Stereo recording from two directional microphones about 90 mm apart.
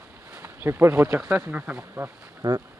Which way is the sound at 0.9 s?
15° right (ahead or behind).